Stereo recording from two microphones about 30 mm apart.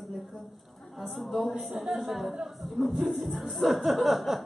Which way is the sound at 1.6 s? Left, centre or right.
Centre.